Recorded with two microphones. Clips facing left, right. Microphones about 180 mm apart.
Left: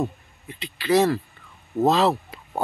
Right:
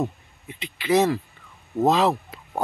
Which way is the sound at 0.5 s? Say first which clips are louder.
Left 1 dB; 20° right (ahead or behind).